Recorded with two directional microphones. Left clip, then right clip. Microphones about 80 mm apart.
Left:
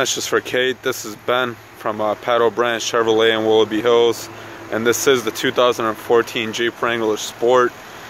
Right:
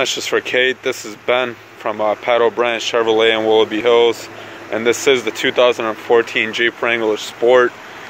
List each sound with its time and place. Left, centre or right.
0.0 s speech: left
4.6 s speech: left